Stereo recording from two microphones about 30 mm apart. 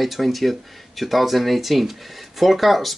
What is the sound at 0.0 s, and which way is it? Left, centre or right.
Speech, centre.